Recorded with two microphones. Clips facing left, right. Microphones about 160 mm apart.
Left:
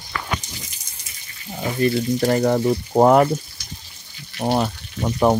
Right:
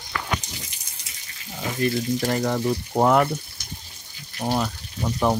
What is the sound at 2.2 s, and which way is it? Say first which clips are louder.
Speech: left 9 dB; 45° left (ahead or behind).